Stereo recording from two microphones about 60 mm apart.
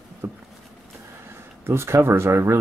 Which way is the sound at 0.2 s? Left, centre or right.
Right.